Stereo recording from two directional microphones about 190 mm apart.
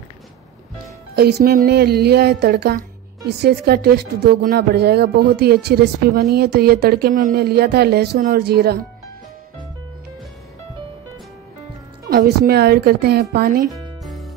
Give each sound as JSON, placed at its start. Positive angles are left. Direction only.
{"t": 1.1, "sound": "speech", "side_deg": -55}
{"t": 7.4, "sound": "speech", "side_deg": -55}
{"t": 12.1, "sound": "speech", "side_deg": -50}